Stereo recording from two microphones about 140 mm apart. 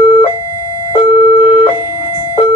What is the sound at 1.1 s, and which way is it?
Siren, 45° left (ahead or behind).